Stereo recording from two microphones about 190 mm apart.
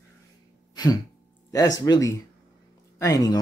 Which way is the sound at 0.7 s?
20° left (ahead or behind).